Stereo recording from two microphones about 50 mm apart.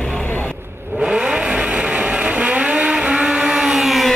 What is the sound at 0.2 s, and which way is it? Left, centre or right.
Vehicle, left.